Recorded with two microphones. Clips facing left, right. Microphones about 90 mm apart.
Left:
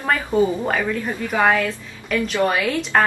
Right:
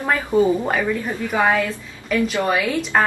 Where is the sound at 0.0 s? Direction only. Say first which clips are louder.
Right 1 dB; centre (ahead or behind).